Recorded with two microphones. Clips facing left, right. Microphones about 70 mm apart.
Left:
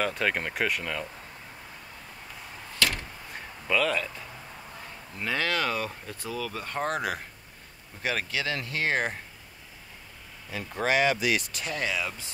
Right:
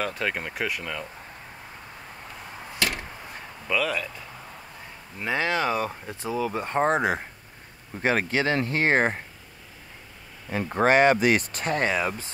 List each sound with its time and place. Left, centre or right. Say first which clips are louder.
0.0 s speech: left 1 dB; centre
3.6 s speech: even; centre
5.2 s speech: right 3 dB; centre
10.5 s speech: right 6 dB; right